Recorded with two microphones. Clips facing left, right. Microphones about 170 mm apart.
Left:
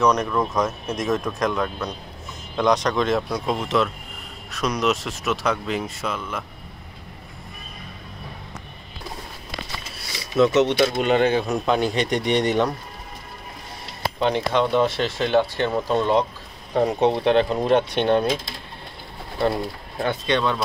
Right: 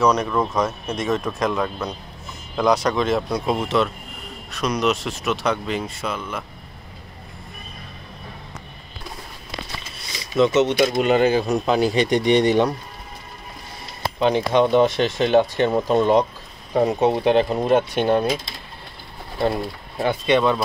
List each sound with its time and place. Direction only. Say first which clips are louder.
0.0 s speech: right 1 dB; 5° right (ahead or behind)
10.3 s speech: even; centre (ahead or behind)
12.4 s speech: right 1 dB; 25° right (ahead or behind)
14.2 s speech: right 3 dB; 15° right (ahead or behind)
19.5 s speech: right 1 dB; 10° right (ahead or behind)